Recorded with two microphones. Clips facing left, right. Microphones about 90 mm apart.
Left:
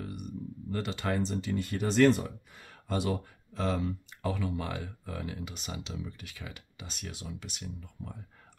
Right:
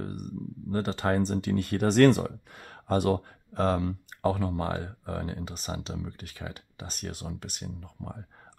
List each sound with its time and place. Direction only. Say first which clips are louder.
0.0 s speech: right 3 dB; 40° right (ahead or behind)